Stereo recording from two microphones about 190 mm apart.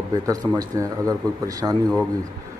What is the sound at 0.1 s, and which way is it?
Speech, 20° right (ahead or behind).